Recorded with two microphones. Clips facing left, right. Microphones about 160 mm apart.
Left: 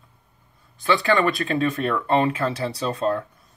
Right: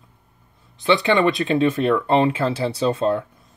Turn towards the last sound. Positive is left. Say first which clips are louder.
# right 4 dB
turn(degrees=-25)  # may be behind; listen again after turning